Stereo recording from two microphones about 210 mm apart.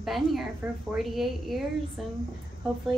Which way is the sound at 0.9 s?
Centre (ahead or behind).